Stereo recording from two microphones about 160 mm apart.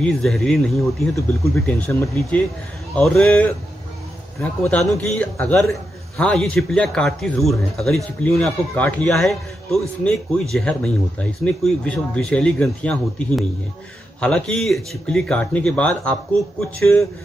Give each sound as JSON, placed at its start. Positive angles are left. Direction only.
{"t": 0.0, "sound": "a man's voice", "side_deg": 5}
{"t": 1.1, "sound": "a man's voice", "side_deg": 20}